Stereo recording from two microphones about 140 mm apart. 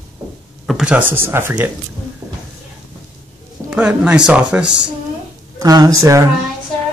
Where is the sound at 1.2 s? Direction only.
15° right (ahead or behind).